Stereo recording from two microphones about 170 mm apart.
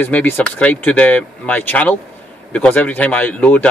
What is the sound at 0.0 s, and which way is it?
Speech, 10° left (ahead or behind).